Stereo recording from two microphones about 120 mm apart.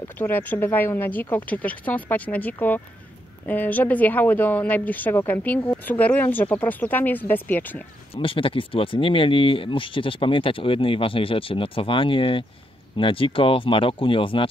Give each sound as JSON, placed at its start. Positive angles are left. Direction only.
{"t": 0.2, "sound": "speech", "side_deg": 15}
{"t": 8.1, "sound": "speech", "side_deg": 50}